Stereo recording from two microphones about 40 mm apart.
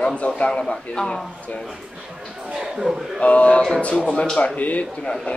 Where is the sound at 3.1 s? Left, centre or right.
Left.